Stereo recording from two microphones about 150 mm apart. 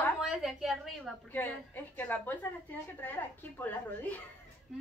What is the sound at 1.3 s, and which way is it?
A woman's voice, 10° left (ahead or behind).